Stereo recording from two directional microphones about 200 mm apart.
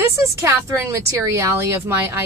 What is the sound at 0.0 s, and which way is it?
Speech, 15° right (ahead or behind).